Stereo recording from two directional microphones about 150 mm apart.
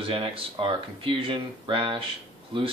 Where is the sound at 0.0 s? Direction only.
35° right (ahead or behind).